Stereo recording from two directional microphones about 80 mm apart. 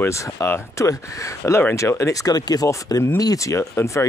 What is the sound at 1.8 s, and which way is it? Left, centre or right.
Speech, left.